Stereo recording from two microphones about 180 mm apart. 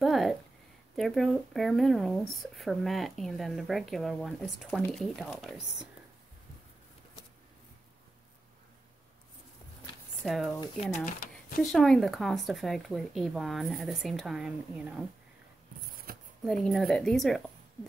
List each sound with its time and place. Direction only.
0.0 s speech: centre (ahead or behind)
10.2 s speech: centre (ahead or behind)
11.1 s speech: 55° left (ahead or behind)
11.6 s speech: centre (ahead or behind)
16.1 s a sound: 55° right (ahead or behind)
16.4 s speech: centre (ahead or behind)